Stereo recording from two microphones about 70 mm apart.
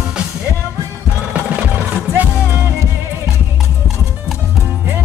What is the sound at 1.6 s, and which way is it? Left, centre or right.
Music, right.